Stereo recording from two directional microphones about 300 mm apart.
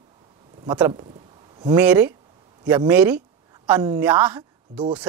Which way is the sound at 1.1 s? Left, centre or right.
Centre.